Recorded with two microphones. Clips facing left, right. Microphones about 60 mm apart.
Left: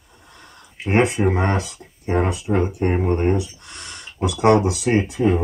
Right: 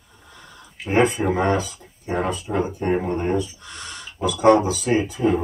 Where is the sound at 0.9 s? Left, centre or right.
Left.